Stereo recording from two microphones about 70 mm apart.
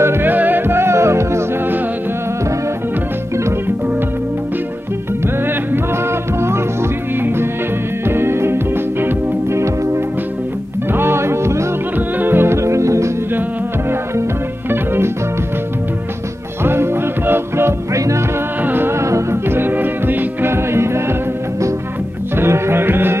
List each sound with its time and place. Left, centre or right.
0.0 s music: right
8.1 s music: right
10.9 s music: right
14.7 s music: right
16.6 s music: right
19.6 s music: right
22.4 s music: right